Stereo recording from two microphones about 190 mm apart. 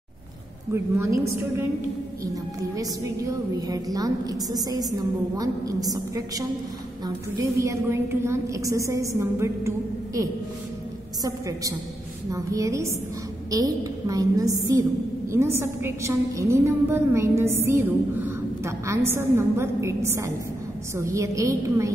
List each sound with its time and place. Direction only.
0.7 s a woman's voice: 15° right (ahead or behind)
2.7 s a woman's voice: 20° right (ahead or behind)
11.2 s a woman's voice: 15° right (ahead or behind)